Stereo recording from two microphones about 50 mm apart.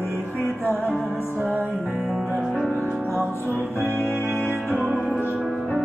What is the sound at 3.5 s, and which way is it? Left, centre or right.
Music, left.